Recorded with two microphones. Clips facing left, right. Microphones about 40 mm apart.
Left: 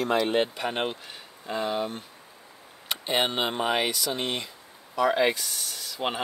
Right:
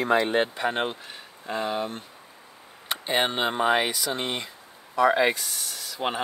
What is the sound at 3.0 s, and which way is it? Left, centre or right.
Speech, centre.